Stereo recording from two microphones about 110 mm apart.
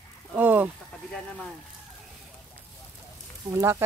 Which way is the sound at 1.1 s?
10° left (ahead or behind).